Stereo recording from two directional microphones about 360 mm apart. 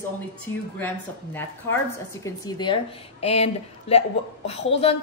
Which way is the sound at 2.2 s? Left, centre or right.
Centre.